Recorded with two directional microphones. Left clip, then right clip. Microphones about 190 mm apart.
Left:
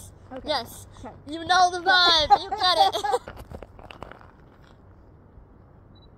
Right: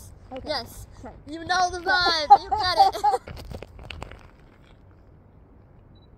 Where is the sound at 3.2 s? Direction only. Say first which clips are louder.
Left 1 dB; 30° right (ahead or behind).